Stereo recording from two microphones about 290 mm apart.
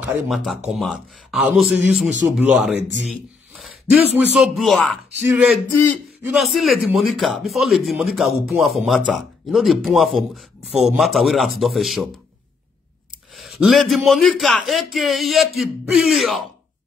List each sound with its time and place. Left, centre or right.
0.1 s a man's voice: centre
13.4 s speech: centre